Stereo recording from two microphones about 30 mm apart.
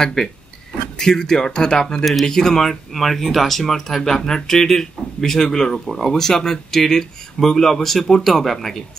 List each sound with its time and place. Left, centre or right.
0.0 s speech: centre